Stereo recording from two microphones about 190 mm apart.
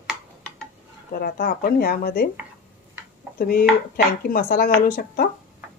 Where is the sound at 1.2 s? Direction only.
50° left (ahead or behind).